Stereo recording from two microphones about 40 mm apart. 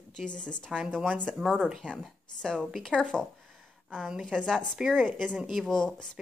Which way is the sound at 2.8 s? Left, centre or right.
Centre.